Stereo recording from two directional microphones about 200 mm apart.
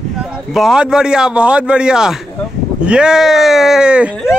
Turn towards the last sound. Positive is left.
turn(degrees=-5)  # may be behind; listen again after turning